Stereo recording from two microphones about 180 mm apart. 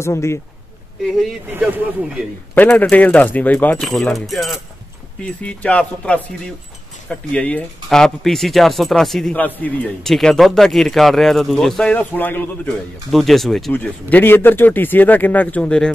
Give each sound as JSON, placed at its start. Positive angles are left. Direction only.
{"t": 0.0, "sound": "speech", "side_deg": 15}
{"t": 1.5, "sound": "speech", "side_deg": -10}
{"t": 2.5, "sound": "speech", "side_deg": 10}